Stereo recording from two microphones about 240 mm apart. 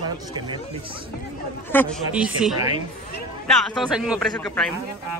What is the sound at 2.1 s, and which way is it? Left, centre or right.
Speech, centre.